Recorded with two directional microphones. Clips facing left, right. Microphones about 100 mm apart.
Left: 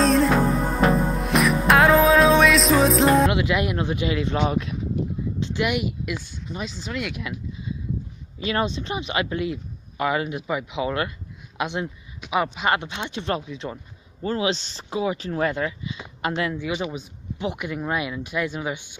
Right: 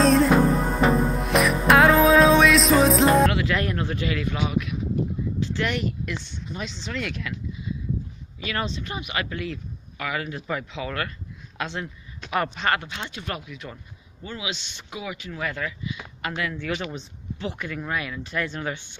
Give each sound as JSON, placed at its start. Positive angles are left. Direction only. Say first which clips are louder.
{"t": 0.0, "sound": "music", "louder": "right 1 dB", "side_deg": 0}
{"t": 3.3, "sound": "speech", "louder": "left 2 dB", "side_deg": 20}
{"t": 5.4, "sound": "speech", "louder": "left 3 dB", "side_deg": 15}
{"t": 8.4, "sound": "speech", "louder": "left 5 dB", "side_deg": 25}
{"t": 12.7, "sound": "speech", "louder": "left 3 dB", "side_deg": 20}
{"t": 14.2, "sound": "speech", "louder": "left 9 dB", "side_deg": 40}
{"t": 16.5, "sound": "speech", "louder": "left 2 dB", "side_deg": 15}